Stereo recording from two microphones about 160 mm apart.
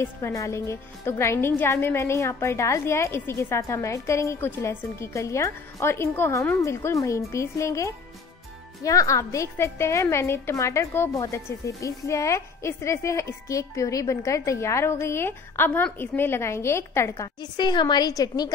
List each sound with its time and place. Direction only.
0.0 s a woman's voice: 20° left (ahead or behind)